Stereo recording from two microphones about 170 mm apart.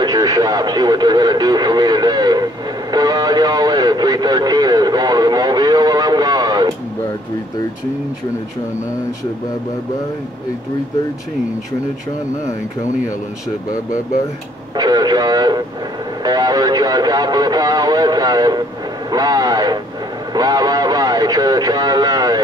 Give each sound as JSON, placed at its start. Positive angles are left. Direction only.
{"t": 0.0, "sound": "radio", "side_deg": -20}
{"t": 14.8, "sound": "speech", "side_deg": -25}